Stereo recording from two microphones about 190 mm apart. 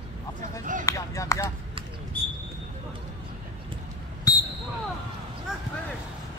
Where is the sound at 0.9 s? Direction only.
15° left (ahead or behind).